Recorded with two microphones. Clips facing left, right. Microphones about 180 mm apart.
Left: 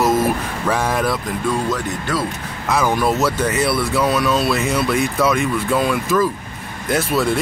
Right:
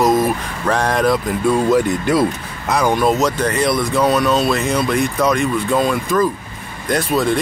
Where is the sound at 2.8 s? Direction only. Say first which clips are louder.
Right 3 dB; 20° right (ahead or behind).